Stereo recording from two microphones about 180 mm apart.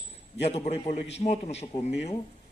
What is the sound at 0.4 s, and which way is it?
A man's voice, 35° left (ahead or behind).